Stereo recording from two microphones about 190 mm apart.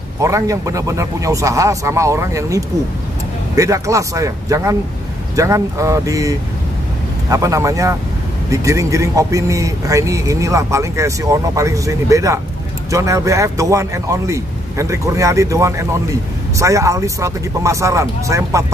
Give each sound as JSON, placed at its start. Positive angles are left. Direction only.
{"t": 0.2, "sound": "a man's voice", "side_deg": -15}